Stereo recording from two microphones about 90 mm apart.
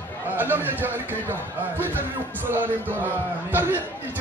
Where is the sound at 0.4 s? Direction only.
20° right (ahead or behind).